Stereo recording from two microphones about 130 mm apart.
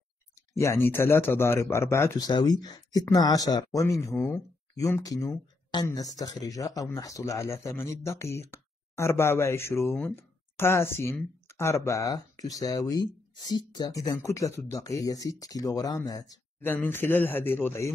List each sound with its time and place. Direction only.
0.6 s speech: 20° left (ahead or behind)
16.6 s speech: 15° left (ahead or behind)